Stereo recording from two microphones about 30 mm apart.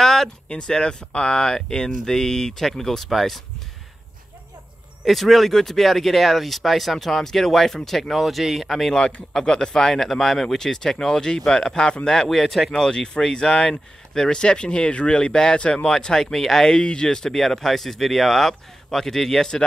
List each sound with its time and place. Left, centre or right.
0.0 s a sound: centre
0.5 s speech: left
3.1 s speech: centre
5.0 s speech: centre
8.1 s speech: centre
9.3 s speech: left
9.8 s speech: centre; by 12.2 s left
12.2 s speech: centre
16.2 s speech: centre
16.7 s speech: left
17.4 s speech: centre